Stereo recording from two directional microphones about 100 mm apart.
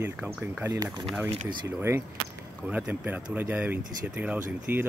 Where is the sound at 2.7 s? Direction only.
15° right (ahead or behind).